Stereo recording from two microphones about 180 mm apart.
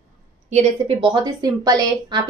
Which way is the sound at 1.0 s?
25° right (ahead or behind).